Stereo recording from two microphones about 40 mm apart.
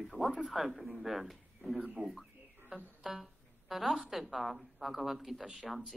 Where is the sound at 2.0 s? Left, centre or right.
Right.